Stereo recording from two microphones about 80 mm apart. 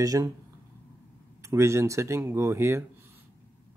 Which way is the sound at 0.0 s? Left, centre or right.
Right.